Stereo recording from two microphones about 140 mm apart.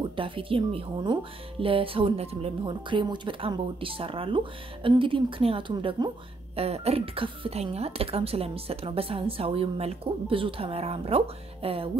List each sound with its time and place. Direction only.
0.1 s speech: 40° right (ahead or behind)
6.6 s speech: 45° right (ahead or behind)